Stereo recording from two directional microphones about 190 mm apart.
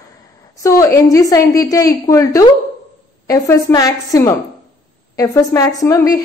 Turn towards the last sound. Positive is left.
turn(degrees=15)  # may be behind; listen again after turning